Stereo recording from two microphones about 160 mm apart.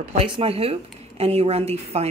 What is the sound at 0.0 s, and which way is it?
A woman's voice, 35° right (ahead or behind).